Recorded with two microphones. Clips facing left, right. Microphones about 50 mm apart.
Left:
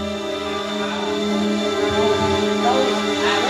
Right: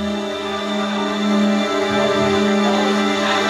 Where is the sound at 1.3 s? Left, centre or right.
Right.